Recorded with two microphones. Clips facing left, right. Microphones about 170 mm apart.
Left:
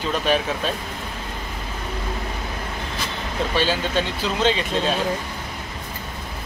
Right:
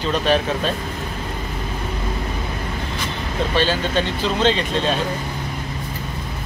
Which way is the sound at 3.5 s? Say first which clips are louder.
Right 2 dB; 10° left (ahead or behind).